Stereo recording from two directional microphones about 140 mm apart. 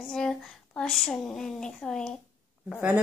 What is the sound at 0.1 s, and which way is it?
Speech, 5° left (ahead or behind).